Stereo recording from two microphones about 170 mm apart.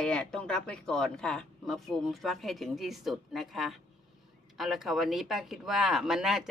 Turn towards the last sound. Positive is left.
turn(degrees=0)  # may be behind; listen again after turning